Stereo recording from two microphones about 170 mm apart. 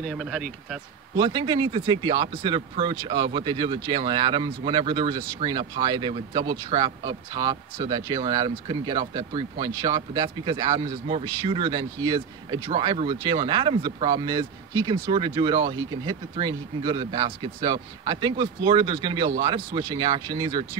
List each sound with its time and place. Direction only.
0.0 s speech: centre (ahead or behind)
1.1 s speech: 30° right (ahead or behind)